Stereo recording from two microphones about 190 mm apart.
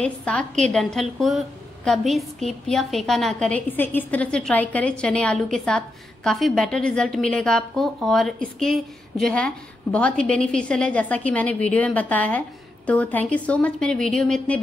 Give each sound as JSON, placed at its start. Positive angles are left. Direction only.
{"t": 0.0, "sound": "a woman's voice", "side_deg": 5}